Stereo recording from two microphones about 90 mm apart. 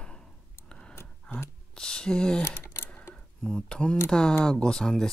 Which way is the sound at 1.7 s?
10° left (ahead or behind).